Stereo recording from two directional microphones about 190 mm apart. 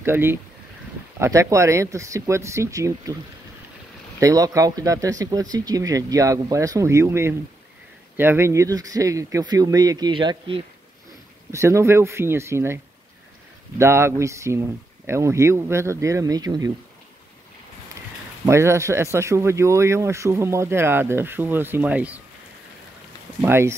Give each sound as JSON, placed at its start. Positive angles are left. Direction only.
{"t": 0.0, "sound": "speech", "side_deg": -10}
{"t": 4.2, "sound": "speech", "side_deg": -15}
{"t": 11.5, "sound": "speech", "side_deg": -15}
{"t": 18.4, "sound": "speech", "side_deg": -15}
{"t": 23.4, "sound": "speech", "side_deg": -10}